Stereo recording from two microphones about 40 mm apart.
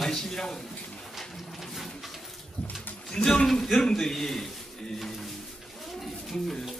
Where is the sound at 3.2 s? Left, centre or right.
Centre.